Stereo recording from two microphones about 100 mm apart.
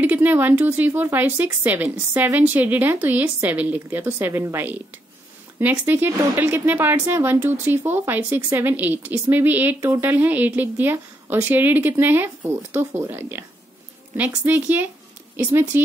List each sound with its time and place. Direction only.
0.0 s a woman's voice: 20° right (ahead or behind)